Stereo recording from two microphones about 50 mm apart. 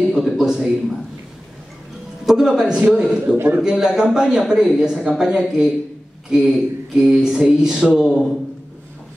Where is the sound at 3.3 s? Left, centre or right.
Right.